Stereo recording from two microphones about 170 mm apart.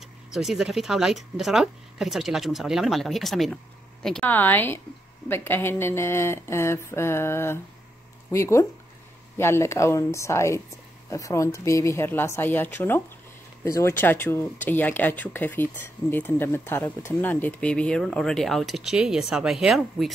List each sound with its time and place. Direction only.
0.3 s speech: centre (ahead or behind)